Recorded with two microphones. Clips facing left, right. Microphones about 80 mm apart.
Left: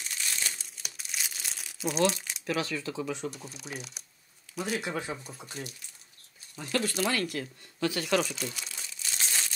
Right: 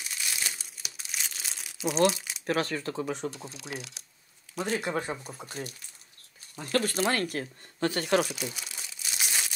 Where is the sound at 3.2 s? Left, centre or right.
Right.